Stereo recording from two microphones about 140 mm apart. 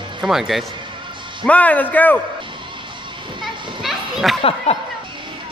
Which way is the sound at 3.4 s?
Centre (ahead or behind).